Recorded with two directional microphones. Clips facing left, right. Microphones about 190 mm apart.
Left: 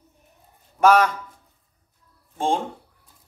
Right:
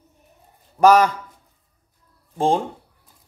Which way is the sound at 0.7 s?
35° right (ahead or behind).